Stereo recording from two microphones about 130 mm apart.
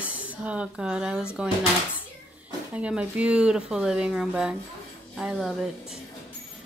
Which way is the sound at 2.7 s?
10° right (ahead or behind).